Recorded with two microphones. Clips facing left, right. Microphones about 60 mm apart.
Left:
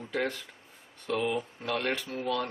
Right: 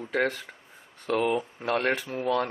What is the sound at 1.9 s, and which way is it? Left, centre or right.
Speech, right.